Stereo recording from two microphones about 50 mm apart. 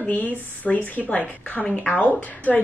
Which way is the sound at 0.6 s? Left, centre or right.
Centre.